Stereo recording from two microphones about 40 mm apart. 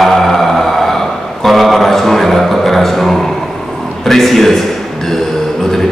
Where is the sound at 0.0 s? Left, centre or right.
Centre.